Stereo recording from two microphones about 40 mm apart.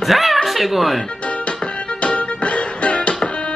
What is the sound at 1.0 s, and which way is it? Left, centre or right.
Music, left.